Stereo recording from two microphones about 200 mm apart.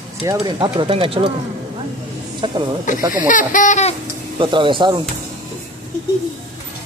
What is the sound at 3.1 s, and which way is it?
Speech, 40° left (ahead or behind).